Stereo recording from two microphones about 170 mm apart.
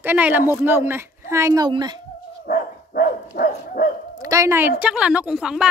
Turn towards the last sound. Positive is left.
turn(degrees=-5)  # may be behind; listen again after turning